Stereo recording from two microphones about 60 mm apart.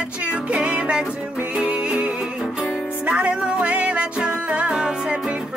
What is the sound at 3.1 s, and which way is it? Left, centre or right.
Music, centre.